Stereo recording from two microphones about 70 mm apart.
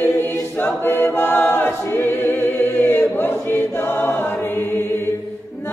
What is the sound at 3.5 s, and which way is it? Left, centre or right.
Choir, left.